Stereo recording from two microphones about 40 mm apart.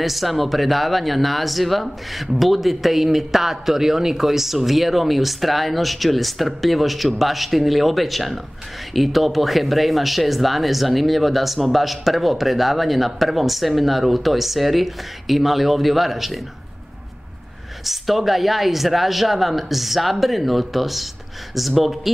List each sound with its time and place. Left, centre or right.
0.0 s speech: centre
17.8 s speech: centre